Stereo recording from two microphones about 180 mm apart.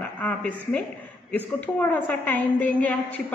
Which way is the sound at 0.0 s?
10° left (ahead or behind).